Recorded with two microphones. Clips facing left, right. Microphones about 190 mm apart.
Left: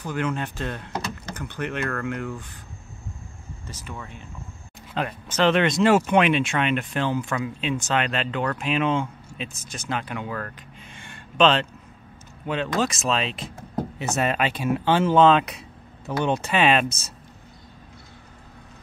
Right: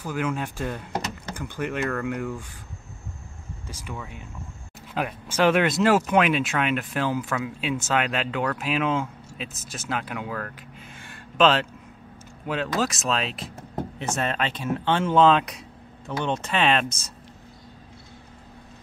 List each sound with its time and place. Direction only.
0.0 s speech: 5° right (ahead or behind)
3.6 s speech: 10° right (ahead or behind); by 17.1 s 5° left (ahead or behind)